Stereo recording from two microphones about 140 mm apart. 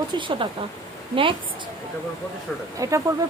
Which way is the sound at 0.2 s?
35° right (ahead or behind).